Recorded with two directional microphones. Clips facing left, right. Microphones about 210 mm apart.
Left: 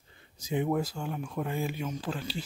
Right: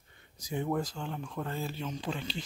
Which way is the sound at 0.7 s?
10° left (ahead or behind).